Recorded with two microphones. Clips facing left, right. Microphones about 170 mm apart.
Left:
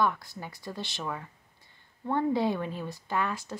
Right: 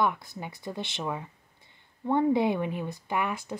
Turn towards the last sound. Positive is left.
turn(degrees=-20)  # may be behind; listen again after turning